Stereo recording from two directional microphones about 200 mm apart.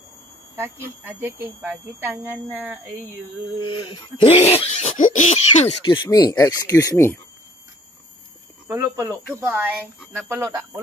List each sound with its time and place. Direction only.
0.6 s speech: 10° right (ahead or behind)
3.5 s laughter: 25° left (ahead or behind)
8.6 s speech: 15° right (ahead or behind)